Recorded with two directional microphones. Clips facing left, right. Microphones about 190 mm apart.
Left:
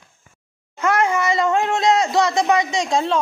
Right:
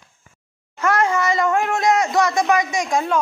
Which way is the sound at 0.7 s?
20° left (ahead or behind).